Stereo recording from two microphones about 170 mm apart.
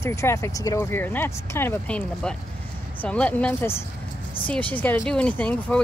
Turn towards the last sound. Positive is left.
turn(degrees=10)  # may be behind; listen again after turning